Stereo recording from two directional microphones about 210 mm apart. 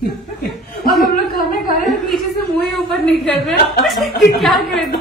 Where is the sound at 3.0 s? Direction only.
5° left (ahead or behind).